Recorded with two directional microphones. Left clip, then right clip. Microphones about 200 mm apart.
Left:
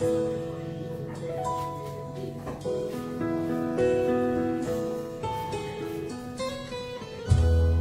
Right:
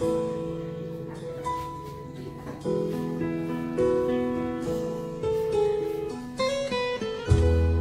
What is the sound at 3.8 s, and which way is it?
Music, centre (ahead or behind).